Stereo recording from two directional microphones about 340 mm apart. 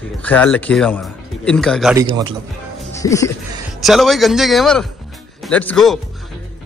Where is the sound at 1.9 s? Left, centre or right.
Centre.